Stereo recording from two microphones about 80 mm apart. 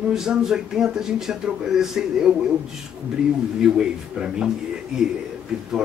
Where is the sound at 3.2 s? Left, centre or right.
Centre.